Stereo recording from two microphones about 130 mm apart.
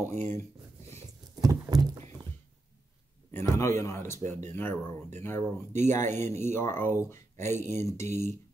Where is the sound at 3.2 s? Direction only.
20° left (ahead or behind).